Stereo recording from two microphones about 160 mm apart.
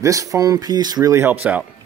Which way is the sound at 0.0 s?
20° right (ahead or behind).